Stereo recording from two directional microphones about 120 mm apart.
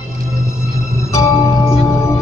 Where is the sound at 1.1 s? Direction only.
25° left (ahead or behind).